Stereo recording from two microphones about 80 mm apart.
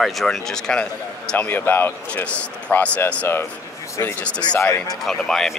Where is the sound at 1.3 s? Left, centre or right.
Left.